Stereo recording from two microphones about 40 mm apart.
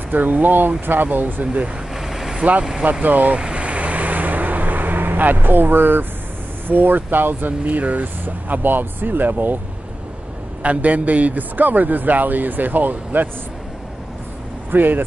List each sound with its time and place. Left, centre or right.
0.1 s a man's voice: right
2.0 s vehicle: centre
2.8 s speech: right
3.3 s vehicle: right
6.7 s speech: right
7.6 s a man's voice: right
10.6 s a man's voice: right
14.7 s speech: right